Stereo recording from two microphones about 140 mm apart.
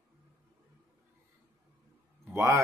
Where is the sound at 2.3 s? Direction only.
20° right (ahead or behind).